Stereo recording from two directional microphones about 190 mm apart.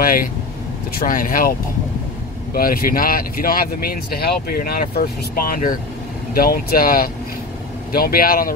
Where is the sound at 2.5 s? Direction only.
50° left (ahead or behind).